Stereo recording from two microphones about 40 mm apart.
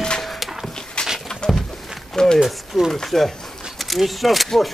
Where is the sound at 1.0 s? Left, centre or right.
Left.